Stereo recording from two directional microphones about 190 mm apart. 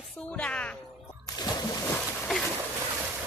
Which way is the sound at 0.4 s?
5° left (ahead or behind).